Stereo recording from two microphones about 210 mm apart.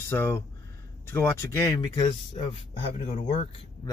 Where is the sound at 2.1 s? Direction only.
30° left (ahead or behind).